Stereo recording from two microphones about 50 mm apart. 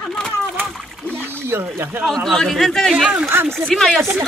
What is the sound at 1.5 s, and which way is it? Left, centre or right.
Speech, right.